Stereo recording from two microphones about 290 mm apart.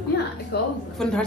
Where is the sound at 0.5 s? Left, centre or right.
Left.